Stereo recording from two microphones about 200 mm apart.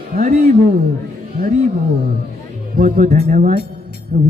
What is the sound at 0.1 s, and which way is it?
Speech, 45° right (ahead or behind).